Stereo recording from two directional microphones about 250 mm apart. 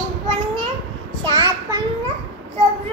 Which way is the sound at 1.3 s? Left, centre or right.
Centre.